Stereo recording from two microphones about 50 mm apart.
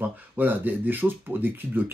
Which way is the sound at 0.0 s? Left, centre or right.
Right.